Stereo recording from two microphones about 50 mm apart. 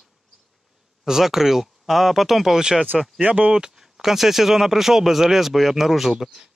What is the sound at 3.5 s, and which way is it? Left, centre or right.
Speech, centre.